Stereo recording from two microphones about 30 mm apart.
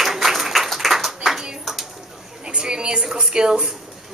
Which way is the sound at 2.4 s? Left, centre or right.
Right.